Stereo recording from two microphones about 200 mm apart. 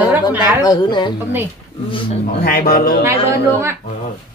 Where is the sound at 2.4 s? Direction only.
50° left (ahead or behind).